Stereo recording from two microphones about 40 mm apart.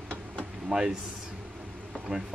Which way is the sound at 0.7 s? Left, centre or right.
Centre.